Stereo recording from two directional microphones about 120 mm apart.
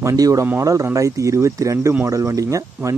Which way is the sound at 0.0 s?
30° right (ahead or behind).